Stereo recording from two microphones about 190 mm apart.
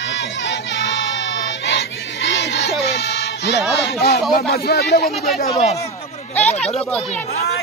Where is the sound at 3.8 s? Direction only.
60° left (ahead or behind).